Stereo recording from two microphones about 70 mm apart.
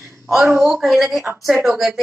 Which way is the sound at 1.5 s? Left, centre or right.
Right.